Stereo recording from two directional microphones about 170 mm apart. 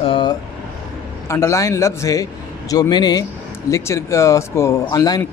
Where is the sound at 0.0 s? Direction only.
30° left (ahead or behind).